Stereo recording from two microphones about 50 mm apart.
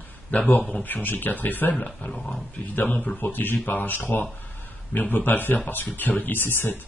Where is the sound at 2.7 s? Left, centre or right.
Left.